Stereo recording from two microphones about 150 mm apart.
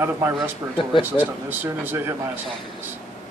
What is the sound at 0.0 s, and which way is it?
Speech, 15° right (ahead or behind).